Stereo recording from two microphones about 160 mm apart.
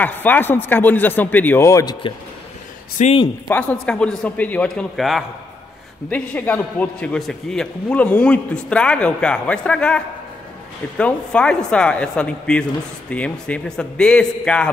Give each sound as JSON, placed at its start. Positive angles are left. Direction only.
{"t": 0.0, "sound": "a man's voice", "side_deg": 10}
{"t": 3.0, "sound": "speech", "side_deg": 50}
{"t": 3.4, "sound": "a man's voice", "side_deg": 10}